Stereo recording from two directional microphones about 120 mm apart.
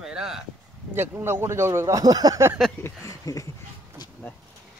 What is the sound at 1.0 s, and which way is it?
Speech, 20° right (ahead or behind).